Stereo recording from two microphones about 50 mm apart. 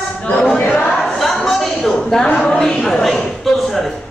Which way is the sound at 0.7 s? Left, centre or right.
Centre.